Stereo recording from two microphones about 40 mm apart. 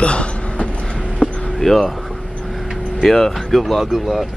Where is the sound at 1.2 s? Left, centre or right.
Centre.